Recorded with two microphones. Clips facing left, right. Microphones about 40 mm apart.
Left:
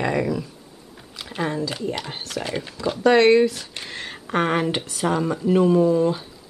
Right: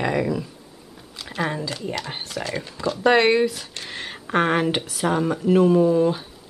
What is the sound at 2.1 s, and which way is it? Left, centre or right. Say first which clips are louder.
Speech: right 1 dB; centre.